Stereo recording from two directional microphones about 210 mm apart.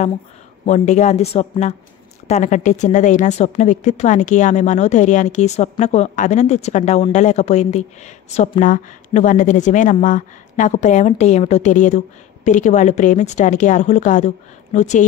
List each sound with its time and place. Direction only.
0.7 s a woman's voice: 35° left (ahead or behind)